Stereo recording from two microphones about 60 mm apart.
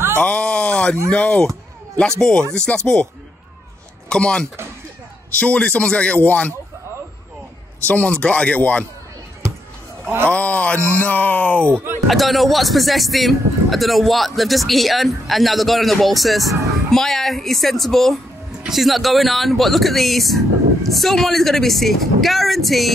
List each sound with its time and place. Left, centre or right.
0.2 s a sound: centre
1.1 s speech: left
2.0 s speech: centre
4.1 s speech: centre
7.8 s speech: left
10.3 s speech: left
11.7 s speech: right
12.1 s speech: centre